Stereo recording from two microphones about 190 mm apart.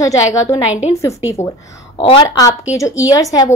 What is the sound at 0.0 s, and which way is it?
Speech, 15° left (ahead or behind).